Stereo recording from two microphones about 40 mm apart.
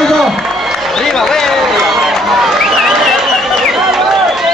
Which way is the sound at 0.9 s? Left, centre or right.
Centre.